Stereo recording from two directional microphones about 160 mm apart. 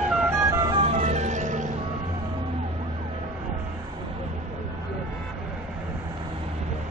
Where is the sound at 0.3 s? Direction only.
20° right (ahead or behind).